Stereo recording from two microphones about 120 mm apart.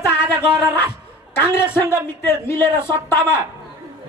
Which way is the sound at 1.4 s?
20° left (ahead or behind).